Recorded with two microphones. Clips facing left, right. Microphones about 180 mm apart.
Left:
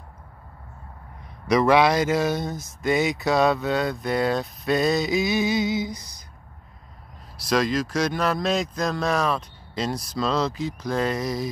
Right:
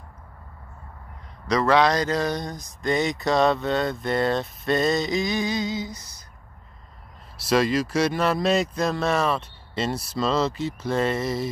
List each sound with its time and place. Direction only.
1.5 s speech: 10° left (ahead or behind)
7.4 s speech: 5° right (ahead or behind)